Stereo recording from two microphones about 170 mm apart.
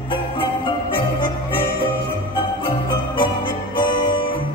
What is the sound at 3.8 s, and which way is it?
Music, 25° left (ahead or behind).